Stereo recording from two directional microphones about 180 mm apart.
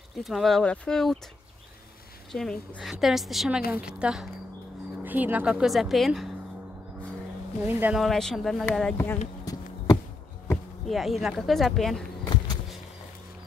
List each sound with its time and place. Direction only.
0.2 s speech: centre (ahead or behind)
2.3 s speech: 5° left (ahead or behind)
7.6 s speech: 5° right (ahead or behind)
8.9 s speech: 10° left (ahead or behind)
9.4 s insect: 20° left (ahead or behind)
10.5 s speech: centre (ahead or behind)